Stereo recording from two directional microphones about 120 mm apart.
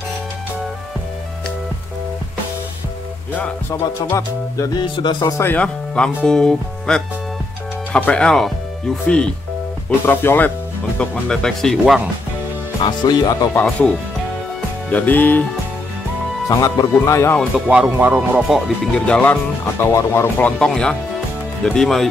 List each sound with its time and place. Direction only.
3.3 s speech: 15° left (ahead or behind)
4.7 s speech: 40° left (ahead or behind)
5.2 s speech: 20° left (ahead or behind)
11.0 s speech: 5° left (ahead or behind)
11.8 s speech: 5° right (ahead or behind)
12.8 s speech: 35° left (ahead or behind)
13.6 s speech: 10° left (ahead or behind)
16.4 s speech: 25° left (ahead or behind)
17.6 s speech: 5° right (ahead or behind)
18.9 s speech: 10° left (ahead or behind)
19.8 s speech: 25° left (ahead or behind)
20.4 s speech: 10° left (ahead or behind)